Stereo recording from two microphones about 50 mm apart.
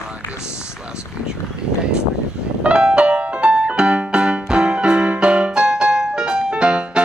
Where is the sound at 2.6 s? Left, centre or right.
Right.